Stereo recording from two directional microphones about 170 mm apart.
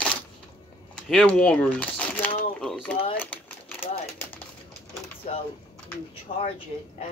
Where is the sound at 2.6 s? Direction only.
Centre (ahead or behind).